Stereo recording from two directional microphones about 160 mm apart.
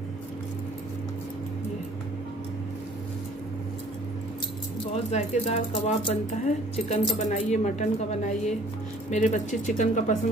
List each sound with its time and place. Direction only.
4.9 s speech: 45° left (ahead or behind)